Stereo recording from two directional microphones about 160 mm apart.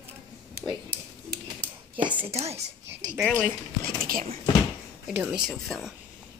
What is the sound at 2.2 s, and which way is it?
Speech, 40° right (ahead or behind).